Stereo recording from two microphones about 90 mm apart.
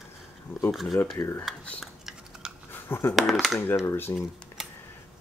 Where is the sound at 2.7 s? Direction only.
25° left (ahead or behind).